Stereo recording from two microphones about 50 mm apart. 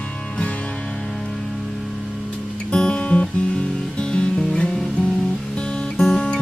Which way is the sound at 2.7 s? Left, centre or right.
Centre.